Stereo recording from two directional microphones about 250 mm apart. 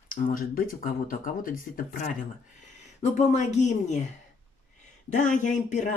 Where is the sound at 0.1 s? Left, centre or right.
Left.